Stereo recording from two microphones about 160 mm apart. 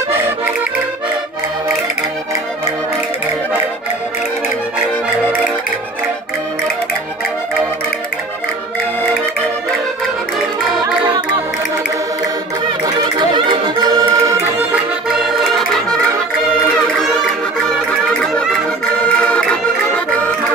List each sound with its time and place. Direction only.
12.8 s music: 30° right (ahead or behind); by 16.0 s centre (ahead or behind)
19.0 s music: 5° left (ahead or behind)